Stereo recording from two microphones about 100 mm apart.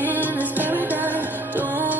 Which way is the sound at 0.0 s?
20° right (ahead or behind).